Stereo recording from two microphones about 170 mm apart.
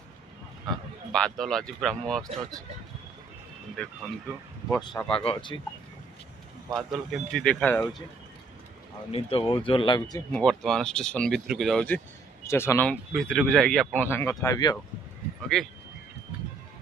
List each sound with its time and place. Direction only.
1.1 s speech: 5° left (ahead or behind)
3.7 s speech: 5° left (ahead or behind)
4.8 s speech: 30° left (ahead or behind)
6.7 s speech: centre (ahead or behind)
7.6 s speech: 15° left (ahead or behind)
9.1 s speech: 35° left (ahead or behind)
10.3 s speech: 5° left (ahead or behind); by 14.8 s 20° left (ahead or behind)
15.5 s speech: 5° left (ahead or behind)